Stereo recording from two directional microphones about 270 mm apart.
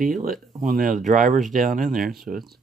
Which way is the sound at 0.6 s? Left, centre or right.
Right.